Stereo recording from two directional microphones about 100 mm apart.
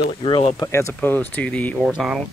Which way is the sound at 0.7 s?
30° left (ahead or behind).